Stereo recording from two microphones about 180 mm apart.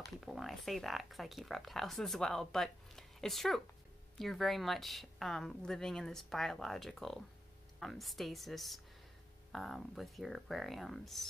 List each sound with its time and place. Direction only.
0.2 s speech: centre (ahead or behind)